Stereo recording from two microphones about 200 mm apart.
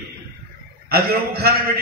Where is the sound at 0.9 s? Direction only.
50° right (ahead or behind).